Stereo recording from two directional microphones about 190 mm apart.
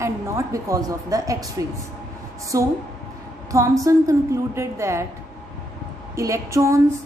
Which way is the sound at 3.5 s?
15° right (ahead or behind).